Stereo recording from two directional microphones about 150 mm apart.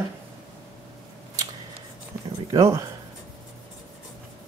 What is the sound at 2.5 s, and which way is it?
Speech, 20° right (ahead or behind).